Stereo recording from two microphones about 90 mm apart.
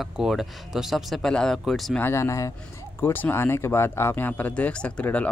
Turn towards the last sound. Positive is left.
turn(degrees=15)  # may be behind; listen again after turning